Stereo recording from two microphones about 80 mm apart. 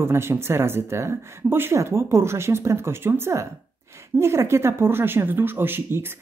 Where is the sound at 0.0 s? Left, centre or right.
Right.